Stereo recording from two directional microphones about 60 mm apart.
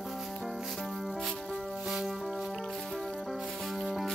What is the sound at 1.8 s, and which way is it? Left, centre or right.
Music, centre.